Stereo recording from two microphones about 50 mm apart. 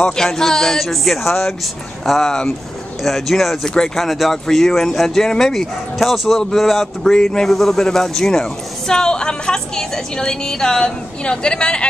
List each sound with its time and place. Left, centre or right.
0.0 s speech: centre